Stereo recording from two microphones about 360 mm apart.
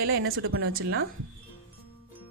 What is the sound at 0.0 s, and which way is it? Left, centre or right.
Speech, right.